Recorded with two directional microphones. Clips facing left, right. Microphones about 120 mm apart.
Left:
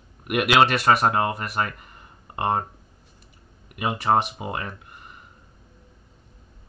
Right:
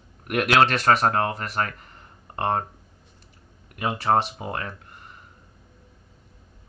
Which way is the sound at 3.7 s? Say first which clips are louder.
Even; 15° left (ahead or behind).